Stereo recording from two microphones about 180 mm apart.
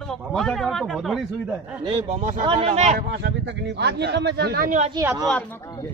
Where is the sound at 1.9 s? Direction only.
35° right (ahead or behind).